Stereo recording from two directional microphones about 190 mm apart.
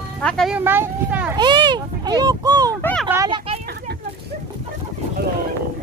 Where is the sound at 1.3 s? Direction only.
25° right (ahead or behind).